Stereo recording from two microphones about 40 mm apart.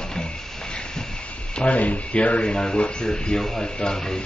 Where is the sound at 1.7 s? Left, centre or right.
Left.